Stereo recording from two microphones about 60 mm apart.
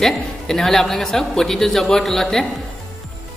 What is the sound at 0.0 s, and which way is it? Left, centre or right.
A man's voice, centre.